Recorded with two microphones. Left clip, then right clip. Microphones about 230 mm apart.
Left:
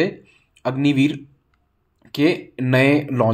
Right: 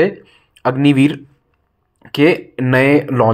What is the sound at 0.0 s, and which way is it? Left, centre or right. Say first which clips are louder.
Speech: right 7 dB; centre.